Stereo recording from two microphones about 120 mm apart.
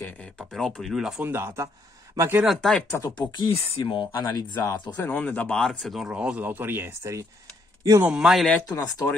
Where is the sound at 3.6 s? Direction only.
40° left (ahead or behind).